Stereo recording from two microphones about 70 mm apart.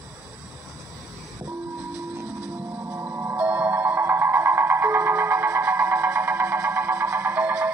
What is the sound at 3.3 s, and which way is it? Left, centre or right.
Music, right.